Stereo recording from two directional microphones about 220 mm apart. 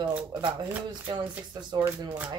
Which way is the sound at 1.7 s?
20° right (ahead or behind).